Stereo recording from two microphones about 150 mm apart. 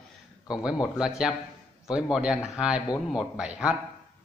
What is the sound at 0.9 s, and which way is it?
A man's voice, 5° right (ahead or behind).